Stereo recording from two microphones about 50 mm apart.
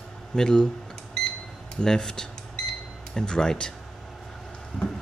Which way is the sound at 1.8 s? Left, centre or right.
Centre.